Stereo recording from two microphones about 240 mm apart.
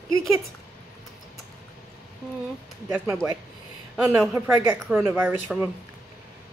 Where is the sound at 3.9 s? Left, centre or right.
Centre.